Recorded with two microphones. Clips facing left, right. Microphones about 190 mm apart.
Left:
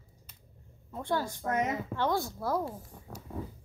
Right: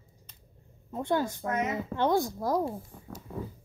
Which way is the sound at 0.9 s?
20° right (ahead or behind).